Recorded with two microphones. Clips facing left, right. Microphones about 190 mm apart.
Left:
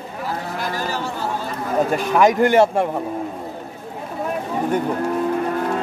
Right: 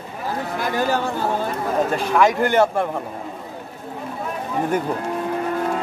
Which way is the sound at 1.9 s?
15° left (ahead or behind).